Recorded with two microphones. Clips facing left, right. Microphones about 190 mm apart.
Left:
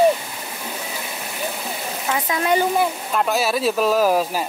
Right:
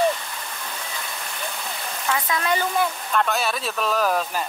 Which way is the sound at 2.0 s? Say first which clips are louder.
Left 3 dB; 25° left (ahead or behind).